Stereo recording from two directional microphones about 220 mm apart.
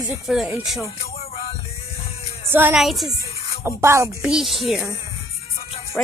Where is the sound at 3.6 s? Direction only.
10° right (ahead or behind).